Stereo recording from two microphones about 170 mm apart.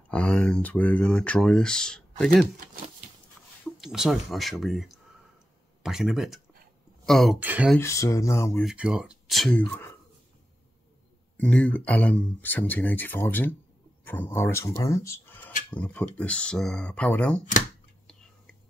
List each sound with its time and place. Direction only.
0.1 s speech: 5° left (ahead or behind)
3.8 s speech: 5° right (ahead or behind)
7.3 s speech: 10° right (ahead or behind)
7.8 s speech: 15° left (ahead or behind)
8.6 s speech: 5° right (ahead or behind)
9.7 s speech: 15° left (ahead or behind)
11.3 s speech: 5° left (ahead or behind)